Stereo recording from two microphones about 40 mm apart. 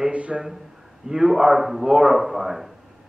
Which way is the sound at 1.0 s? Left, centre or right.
Centre.